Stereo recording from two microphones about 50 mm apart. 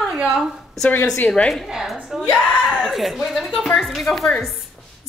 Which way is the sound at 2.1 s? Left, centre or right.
Centre.